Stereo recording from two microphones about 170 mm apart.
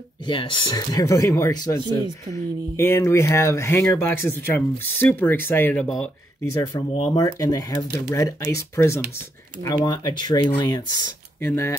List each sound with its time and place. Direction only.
0.3 s speech: 30° left (ahead or behind); by 6.0 s 5° left (ahead or behind)
6.5 s speech: 15° left (ahead or behind)